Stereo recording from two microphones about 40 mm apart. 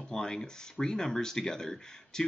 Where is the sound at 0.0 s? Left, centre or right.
Centre.